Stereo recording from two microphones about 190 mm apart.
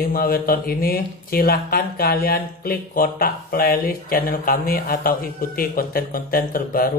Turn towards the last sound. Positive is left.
turn(degrees=50)  # may be behind; listen again after turning